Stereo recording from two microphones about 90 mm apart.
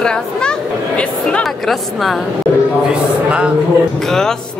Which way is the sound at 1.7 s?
Centre (ahead or behind).